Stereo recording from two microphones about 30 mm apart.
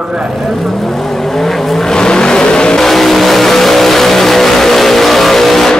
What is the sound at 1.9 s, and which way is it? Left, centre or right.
Vehicle, left.